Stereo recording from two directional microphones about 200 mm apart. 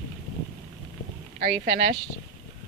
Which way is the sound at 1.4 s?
45° right (ahead or behind).